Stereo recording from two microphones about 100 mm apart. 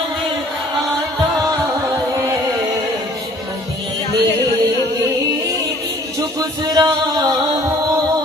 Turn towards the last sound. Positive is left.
turn(degrees=-40)  # may be behind; listen again after turning